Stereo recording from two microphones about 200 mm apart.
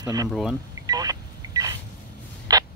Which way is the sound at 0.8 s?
20° right (ahead or behind).